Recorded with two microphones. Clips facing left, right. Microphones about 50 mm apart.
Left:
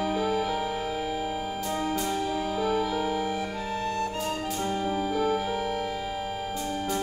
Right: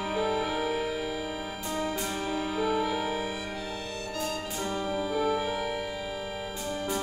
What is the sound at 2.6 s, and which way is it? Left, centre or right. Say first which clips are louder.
Music: left 1 dB; centre.